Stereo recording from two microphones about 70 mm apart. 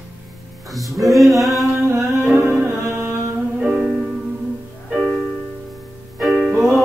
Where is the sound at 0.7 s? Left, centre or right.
Centre.